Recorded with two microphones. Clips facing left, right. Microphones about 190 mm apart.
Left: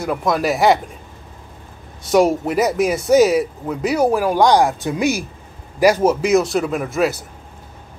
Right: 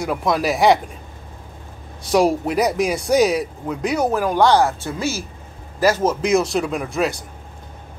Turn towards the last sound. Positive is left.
turn(degrees=0)  # may be behind; listen again after turning